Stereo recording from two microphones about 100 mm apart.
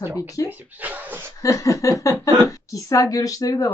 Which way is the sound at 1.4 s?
35° left (ahead or behind).